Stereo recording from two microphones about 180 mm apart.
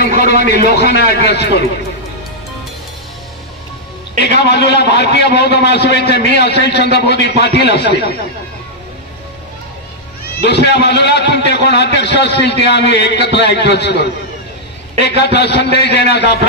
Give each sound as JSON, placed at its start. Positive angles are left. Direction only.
{"t": 0.3, "sound": "a man's voice", "side_deg": -45}
{"t": 0.6, "sound": "a man's voice", "side_deg": 65}
{"t": 4.4, "sound": "a man's voice", "side_deg": 70}
{"t": 10.4, "sound": "a man's voice", "side_deg": 65}